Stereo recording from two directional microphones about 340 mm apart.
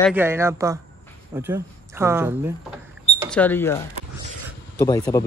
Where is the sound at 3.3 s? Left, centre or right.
Centre.